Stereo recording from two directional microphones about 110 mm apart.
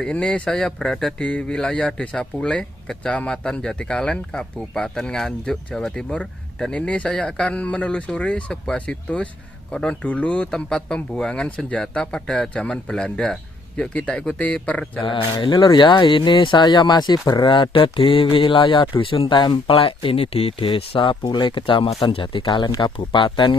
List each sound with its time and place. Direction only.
0.0 s speech: 10° left (ahead or behind)
15.0 s speech: 50° left (ahead or behind)